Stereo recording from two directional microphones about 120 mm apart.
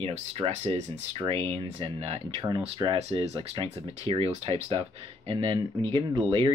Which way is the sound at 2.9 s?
60° right (ahead or behind).